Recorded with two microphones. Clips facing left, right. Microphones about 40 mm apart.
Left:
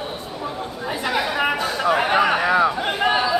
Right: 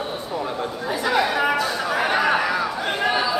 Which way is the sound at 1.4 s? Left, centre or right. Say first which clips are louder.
Even; centre.